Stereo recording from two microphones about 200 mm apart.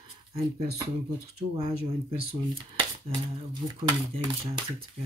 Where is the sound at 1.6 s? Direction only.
30° right (ahead or behind).